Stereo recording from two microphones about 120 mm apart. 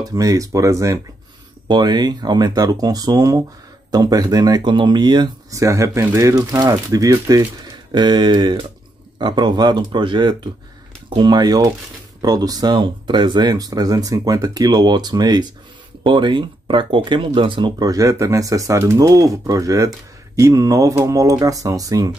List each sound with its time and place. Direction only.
0.0 s speech: 30° right (ahead or behind)
1.7 s speech: 35° right (ahead or behind)
5.5 s speech: 25° right (ahead or behind)